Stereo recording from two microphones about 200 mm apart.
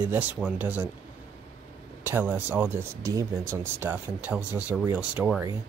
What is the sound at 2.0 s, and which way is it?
Speech, 10° right (ahead or behind).